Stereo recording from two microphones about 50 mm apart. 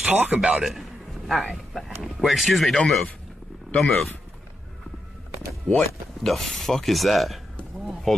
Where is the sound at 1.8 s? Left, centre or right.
Centre.